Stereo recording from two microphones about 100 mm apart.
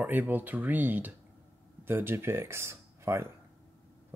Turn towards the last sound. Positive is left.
turn(degrees=-25)  # may be behind; listen again after turning